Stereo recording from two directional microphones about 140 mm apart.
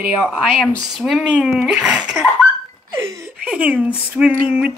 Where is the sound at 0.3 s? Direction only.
Centre (ahead or behind).